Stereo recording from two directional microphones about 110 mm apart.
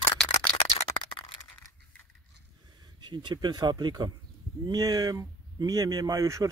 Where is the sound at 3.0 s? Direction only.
45° right (ahead or behind).